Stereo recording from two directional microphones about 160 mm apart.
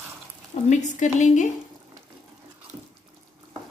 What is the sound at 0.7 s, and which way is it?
Speech, 50° left (ahead or behind).